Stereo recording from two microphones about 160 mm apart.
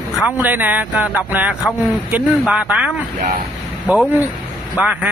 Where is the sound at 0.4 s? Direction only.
10° right (ahead or behind).